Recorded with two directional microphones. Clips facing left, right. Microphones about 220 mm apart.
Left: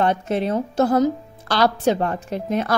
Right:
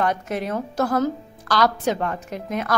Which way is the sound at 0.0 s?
25° left (ahead or behind).